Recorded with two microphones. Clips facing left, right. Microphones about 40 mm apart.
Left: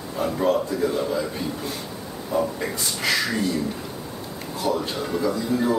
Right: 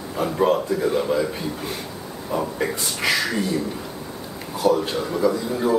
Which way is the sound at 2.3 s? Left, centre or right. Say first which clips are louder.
Even; centre.